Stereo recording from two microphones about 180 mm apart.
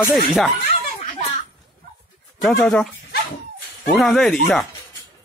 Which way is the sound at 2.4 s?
5° left (ahead or behind).